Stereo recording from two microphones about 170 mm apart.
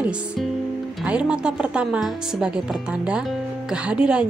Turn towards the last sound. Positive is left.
turn(degrees=-5)  # may be behind; listen again after turning